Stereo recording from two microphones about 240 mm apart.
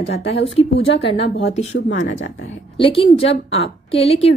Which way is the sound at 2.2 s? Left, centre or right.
Left.